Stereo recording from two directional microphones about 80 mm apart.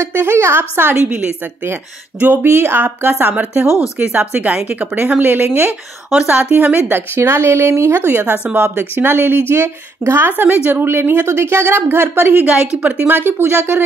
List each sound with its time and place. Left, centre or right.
0.0 s a woman's voice: right
2.1 s a woman's voice: centre
7.2 s a woman's voice: right